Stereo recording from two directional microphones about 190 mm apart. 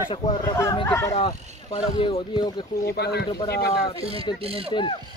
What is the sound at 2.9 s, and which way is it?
Speech, 60° left (ahead or behind).